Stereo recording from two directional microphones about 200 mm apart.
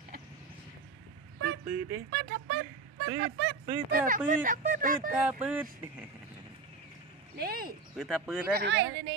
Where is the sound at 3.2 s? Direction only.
55° right (ahead or behind).